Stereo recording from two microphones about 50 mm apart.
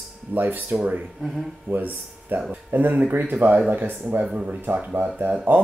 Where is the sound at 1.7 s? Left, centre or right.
Right.